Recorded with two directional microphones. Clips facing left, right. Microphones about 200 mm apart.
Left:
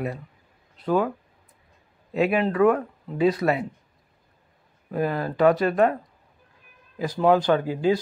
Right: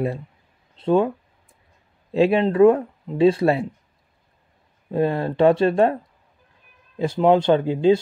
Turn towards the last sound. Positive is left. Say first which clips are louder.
# right 5 dB
turn(degrees=-25)  # may be behind; listen again after turning